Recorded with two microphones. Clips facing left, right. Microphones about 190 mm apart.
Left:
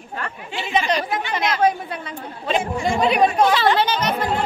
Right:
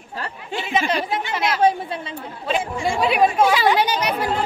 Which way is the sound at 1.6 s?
30° right (ahead or behind).